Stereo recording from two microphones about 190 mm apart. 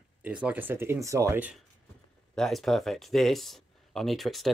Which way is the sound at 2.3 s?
Centre (ahead or behind).